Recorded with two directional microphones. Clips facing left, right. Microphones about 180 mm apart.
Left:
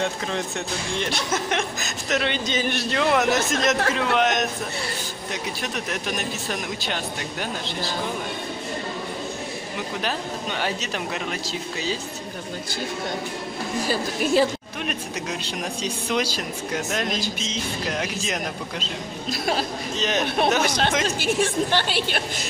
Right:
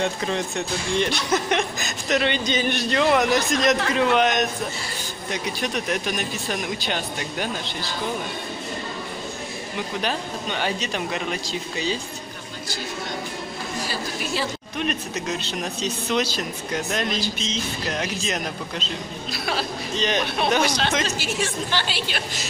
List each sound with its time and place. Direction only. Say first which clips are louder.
0.0 s speech: right 2 dB; centre (ahead or behind)
10.0 s speech: right 1 dB; 5° left (ahead or behind)
13.8 s a woman's voice: left 9 dB; 50° left (ahead or behind)
14.8 s speech: right 4 dB; 10° left (ahead or behind)
19.3 s a woman's voice: left 3 dB; 45° left (ahead or behind)
20.0 s speech: right 1 dB; 5° left (ahead or behind)
20.6 s a woman's voice: left 1 dB; 50° left (ahead or behind)